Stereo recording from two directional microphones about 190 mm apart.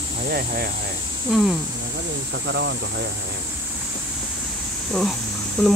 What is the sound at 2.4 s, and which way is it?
Speech, 70° right (ahead or behind).